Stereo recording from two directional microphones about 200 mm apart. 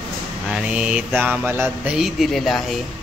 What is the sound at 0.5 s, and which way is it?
Speech, 5° right (ahead or behind).